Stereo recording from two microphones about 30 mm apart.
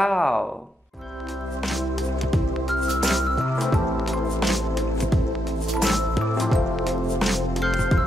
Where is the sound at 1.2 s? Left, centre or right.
Centre.